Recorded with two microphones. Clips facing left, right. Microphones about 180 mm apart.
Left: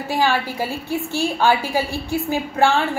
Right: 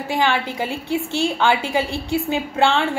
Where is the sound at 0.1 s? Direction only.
20° right (ahead or behind).